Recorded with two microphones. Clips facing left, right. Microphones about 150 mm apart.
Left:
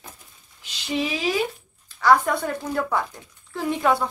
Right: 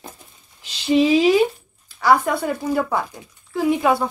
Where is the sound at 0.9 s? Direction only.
25° right (ahead or behind).